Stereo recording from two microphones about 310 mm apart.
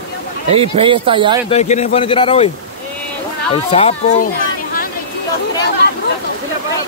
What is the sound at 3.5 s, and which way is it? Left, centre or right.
Speech, centre.